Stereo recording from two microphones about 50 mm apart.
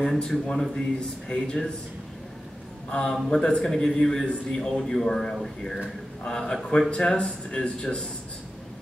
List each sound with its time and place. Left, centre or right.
0.2 s a man's voice: centre
2.9 s a man's voice: centre